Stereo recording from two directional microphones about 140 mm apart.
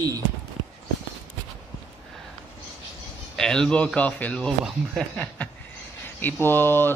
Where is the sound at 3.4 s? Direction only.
5° left (ahead or behind).